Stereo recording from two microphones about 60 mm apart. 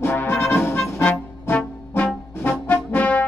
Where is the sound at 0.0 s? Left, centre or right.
Left.